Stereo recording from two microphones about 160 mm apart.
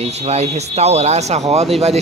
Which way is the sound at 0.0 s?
40° right (ahead or behind).